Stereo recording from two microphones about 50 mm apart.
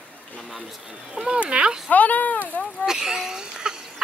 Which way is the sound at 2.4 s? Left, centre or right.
Left.